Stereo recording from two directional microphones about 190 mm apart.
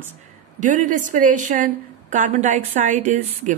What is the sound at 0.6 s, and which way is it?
A woman's voice, 40° right (ahead or behind).